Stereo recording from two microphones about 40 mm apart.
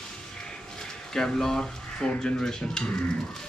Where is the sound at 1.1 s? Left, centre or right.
Centre.